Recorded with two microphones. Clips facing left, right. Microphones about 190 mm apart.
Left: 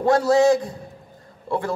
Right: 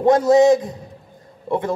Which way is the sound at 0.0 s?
20° right (ahead or behind).